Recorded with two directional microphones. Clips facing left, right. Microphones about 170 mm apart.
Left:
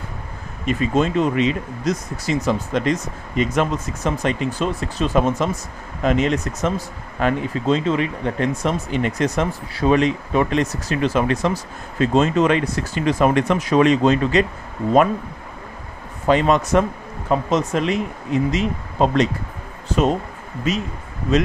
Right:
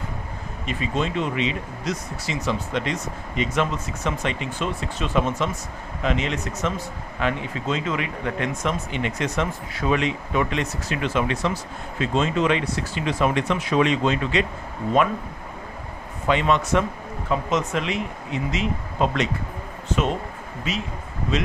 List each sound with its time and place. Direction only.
0.7 s speech: 45° left (ahead or behind)
16.3 s speech: 40° left (ahead or behind)